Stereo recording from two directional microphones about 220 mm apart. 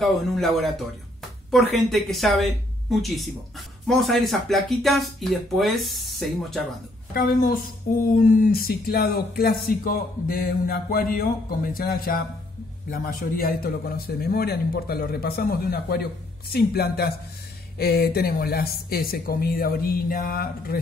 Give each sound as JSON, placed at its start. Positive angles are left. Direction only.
{"t": 0.0, "sound": "speech", "side_deg": 0}
{"t": 7.2, "sound": "a man's voice", "side_deg": 40}